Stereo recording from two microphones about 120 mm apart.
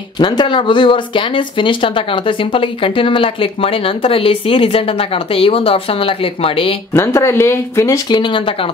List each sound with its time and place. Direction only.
0.2 s speech: 40° left (ahead or behind)
6.9 s speech: 25° left (ahead or behind)
8.2 s speech: 45° left (ahead or behind)